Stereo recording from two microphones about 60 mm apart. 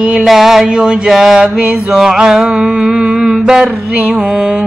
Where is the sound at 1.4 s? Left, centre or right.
Centre.